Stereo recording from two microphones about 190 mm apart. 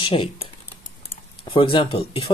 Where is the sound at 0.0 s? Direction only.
30° left (ahead or behind).